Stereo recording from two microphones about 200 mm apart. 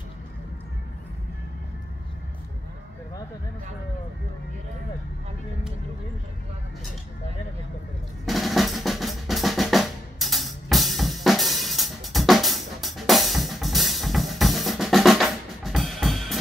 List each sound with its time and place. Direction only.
8.3 s drum: centre (ahead or behind)